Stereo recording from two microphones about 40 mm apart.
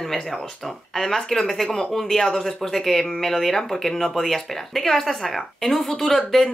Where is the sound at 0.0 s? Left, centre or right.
Centre.